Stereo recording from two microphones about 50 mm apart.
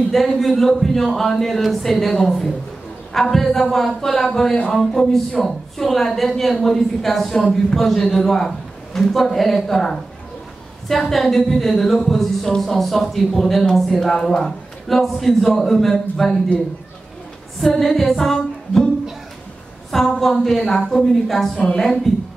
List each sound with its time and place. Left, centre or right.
0.1 s a woman's voice: centre
17.7 s a woman's voice: centre
19.9 s a woman's voice: centre
21.5 s a man's voice: centre